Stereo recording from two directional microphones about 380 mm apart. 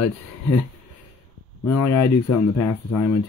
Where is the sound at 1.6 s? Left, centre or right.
Left.